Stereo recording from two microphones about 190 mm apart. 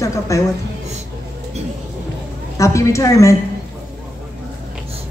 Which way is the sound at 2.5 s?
15° left (ahead or behind).